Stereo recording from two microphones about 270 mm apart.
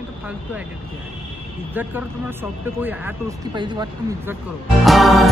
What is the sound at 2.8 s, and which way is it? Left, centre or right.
Speech, centre.